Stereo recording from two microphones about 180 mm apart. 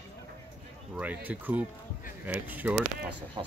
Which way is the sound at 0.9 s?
10° right (ahead or behind).